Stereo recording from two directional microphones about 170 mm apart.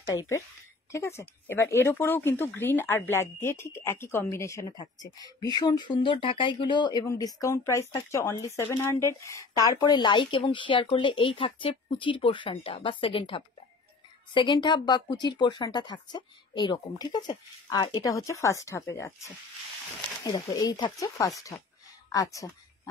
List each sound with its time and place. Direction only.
0.0 s speech: 15° left (ahead or behind)